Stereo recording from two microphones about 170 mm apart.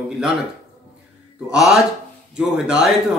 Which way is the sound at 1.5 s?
Centre (ahead or behind).